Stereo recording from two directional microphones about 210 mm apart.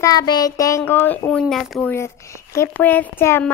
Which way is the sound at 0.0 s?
15° left (ahead or behind).